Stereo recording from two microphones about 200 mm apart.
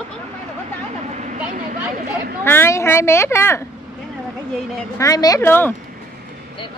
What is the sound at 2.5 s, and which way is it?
A woman's voice, 15° left (ahead or behind).